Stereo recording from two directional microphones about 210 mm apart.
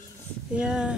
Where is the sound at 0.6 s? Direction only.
5° right (ahead or behind).